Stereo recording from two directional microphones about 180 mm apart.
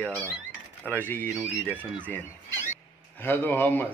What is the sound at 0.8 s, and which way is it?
Speech, 10° left (ahead or behind).